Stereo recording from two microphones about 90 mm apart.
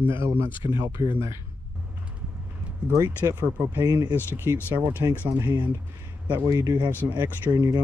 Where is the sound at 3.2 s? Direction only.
30° right (ahead or behind).